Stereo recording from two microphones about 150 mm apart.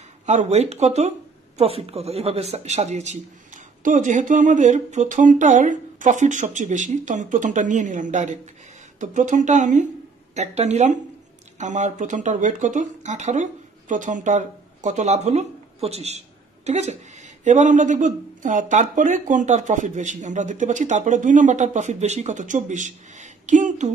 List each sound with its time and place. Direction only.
0.3 s speech: 50° right (ahead or behind)